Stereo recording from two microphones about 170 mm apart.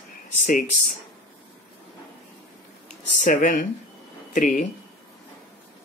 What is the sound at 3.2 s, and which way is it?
Speech, 50° left (ahead or behind).